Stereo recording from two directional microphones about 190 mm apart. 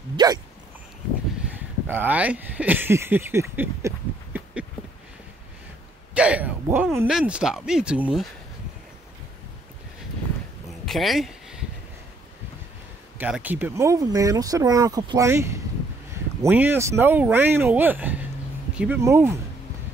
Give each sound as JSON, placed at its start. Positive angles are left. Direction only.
{"t": 0.1, "sound": "speech", "side_deg": -20}
{"t": 1.9, "sound": "speech", "side_deg": -10}
{"t": 6.1, "sound": "speech", "side_deg": -5}
{"t": 10.9, "sound": "a sound", "side_deg": 0}
{"t": 13.2, "sound": "speech", "side_deg": -10}